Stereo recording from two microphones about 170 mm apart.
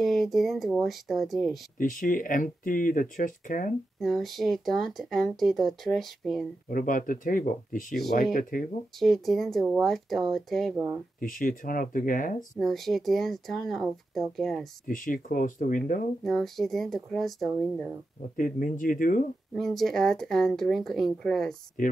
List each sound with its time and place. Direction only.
0.0 s speech: centre (ahead or behind)
1.8 s speech: 50° left (ahead or behind)
4.0 s speech: centre (ahead or behind)
6.7 s speech: 50° left (ahead or behind)
9.0 s speech: centre (ahead or behind)
11.1 s speech: 50° left (ahead or behind)
12.5 s speech: centre (ahead or behind)
14.9 s speech: 50° left (ahead or behind)
16.3 s speech: centre (ahead or behind)
18.3 s speech: 55° left (ahead or behind)
19.5 s speech: centre (ahead or behind)